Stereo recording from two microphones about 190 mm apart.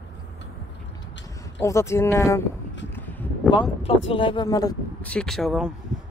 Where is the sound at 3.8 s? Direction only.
30° left (ahead or behind).